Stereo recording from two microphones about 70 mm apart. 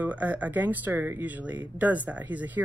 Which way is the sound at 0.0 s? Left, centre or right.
Right.